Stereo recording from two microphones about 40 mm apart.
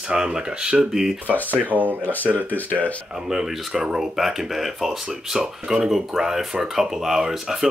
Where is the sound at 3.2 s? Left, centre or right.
Centre.